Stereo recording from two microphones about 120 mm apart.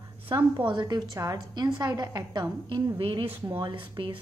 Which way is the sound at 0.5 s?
40° right (ahead or behind).